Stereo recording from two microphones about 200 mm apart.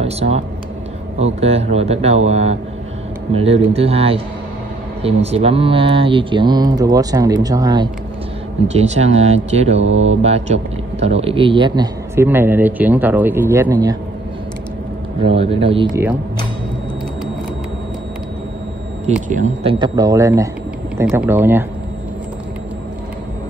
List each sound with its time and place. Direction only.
0.0 s speech: 30° right (ahead or behind)
8.6 s speech: 35° right (ahead or behind)
9.8 s mantra: 70° right (ahead or behind)
10.0 s a man's voice: 30° right (ahead or behind); by 13.9 s 15° right (ahead or behind)
15.2 s speech: 30° right (ahead or behind)
19.2 s a man's voice: 35° right (ahead or behind); by 21.6 s 10° right (ahead or behind)